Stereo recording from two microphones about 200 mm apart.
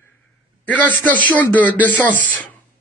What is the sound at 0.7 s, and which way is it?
A man's voice, 10° left (ahead or behind).